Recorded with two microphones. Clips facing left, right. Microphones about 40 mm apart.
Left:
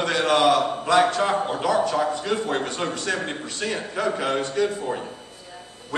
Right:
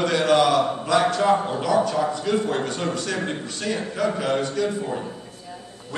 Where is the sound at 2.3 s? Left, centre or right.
Left.